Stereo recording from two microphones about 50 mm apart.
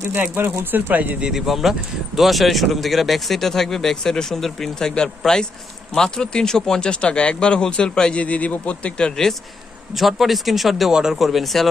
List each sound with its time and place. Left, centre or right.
0.7 s speech: right
1.3 s speech: centre; by 9.1 s left
9.9 s speech: centre